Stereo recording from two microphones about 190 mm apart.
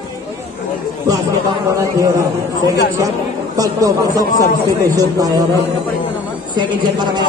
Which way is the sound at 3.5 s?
20° right (ahead or behind).